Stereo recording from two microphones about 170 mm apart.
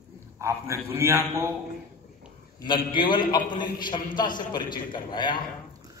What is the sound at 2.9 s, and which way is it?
A man's voice, 30° left (ahead or behind).